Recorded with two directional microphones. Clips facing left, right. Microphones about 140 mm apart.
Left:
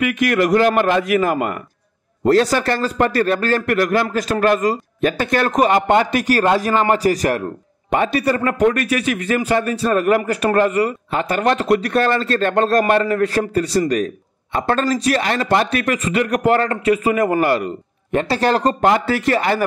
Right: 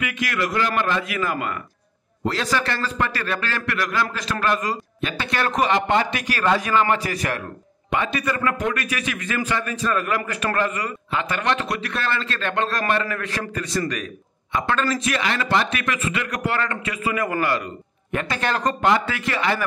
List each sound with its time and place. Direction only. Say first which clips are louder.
0.0 s a man's voice: left 9 dB; 45° left (ahead or behind)